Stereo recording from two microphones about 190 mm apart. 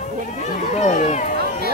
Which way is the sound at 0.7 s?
40° left (ahead or behind).